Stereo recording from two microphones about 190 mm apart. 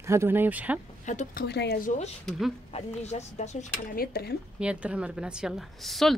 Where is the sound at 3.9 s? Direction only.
50° left (ahead or behind).